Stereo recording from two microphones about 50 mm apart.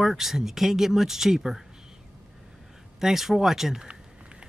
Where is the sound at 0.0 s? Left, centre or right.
Centre.